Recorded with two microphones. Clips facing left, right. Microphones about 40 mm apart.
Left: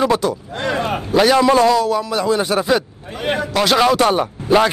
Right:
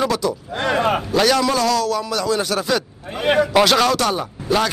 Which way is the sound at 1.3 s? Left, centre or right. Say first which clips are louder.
Left 5 dB; left.